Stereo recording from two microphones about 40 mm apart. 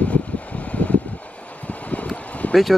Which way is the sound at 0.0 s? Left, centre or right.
Left.